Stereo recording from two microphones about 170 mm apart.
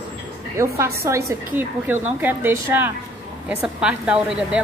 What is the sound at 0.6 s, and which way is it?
A woman's voice, 15° right (ahead or behind).